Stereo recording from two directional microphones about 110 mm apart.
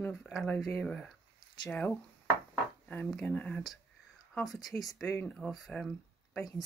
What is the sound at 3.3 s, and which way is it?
Speech, 15° left (ahead or behind).